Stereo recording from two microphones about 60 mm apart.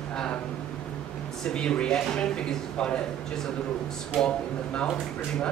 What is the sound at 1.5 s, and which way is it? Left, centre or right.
A woman's voice, centre.